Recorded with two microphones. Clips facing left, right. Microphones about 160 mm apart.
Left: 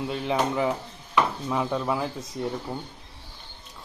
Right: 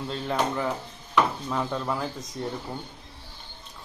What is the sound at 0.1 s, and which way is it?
Speech, 10° left (ahead or behind).